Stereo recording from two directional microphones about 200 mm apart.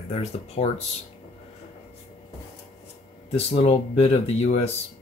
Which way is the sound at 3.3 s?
30° left (ahead or behind).